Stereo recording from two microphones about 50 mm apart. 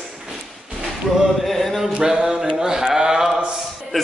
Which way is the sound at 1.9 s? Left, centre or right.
Centre.